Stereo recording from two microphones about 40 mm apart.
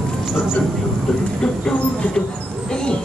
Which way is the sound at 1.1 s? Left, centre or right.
Centre.